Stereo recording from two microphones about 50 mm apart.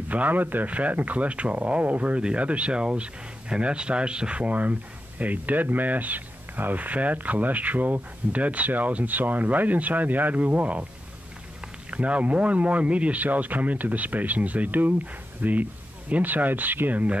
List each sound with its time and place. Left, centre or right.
0.1 s speech: right
11.9 s speech: right